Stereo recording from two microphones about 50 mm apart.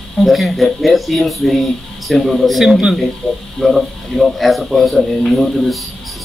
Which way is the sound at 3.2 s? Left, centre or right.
Left.